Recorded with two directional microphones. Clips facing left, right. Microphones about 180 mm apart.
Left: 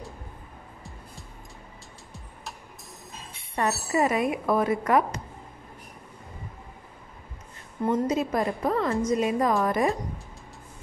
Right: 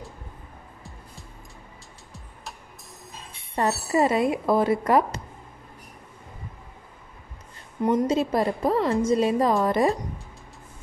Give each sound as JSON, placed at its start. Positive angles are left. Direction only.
{"t": 3.5, "sound": "speech", "side_deg": -30}
{"t": 7.8, "sound": "a woman's voice", "side_deg": -30}